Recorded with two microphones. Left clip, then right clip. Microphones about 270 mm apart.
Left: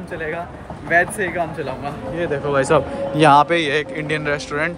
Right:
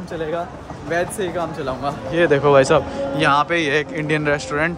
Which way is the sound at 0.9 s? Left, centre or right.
Centre.